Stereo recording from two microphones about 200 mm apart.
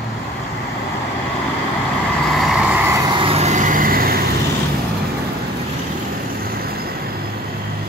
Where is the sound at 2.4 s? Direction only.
5° right (ahead or behind).